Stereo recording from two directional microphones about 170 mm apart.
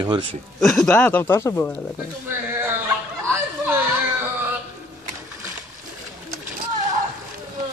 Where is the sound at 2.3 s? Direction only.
15° right (ahead or behind).